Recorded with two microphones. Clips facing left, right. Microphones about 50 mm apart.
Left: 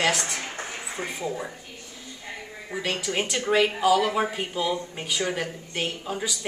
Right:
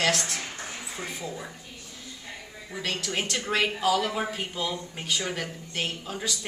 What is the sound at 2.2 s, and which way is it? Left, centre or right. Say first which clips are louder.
A woman's voice: left 6 dB; centre.